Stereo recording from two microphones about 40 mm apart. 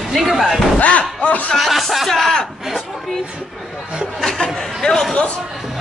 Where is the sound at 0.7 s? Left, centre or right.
Left.